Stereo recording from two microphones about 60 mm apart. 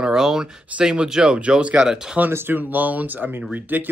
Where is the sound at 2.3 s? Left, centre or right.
Right.